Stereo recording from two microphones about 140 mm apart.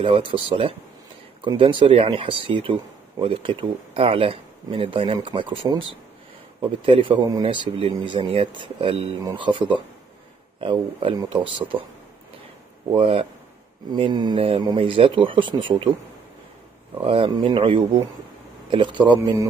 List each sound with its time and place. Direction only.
0.0 s speech: 40° right (ahead or behind)
12.9 s speech: 40° right (ahead or behind)
17.0 s speech: 40° right (ahead or behind)